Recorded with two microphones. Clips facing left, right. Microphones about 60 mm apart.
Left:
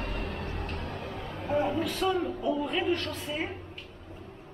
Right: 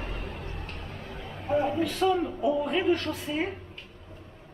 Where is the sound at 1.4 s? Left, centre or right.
Centre.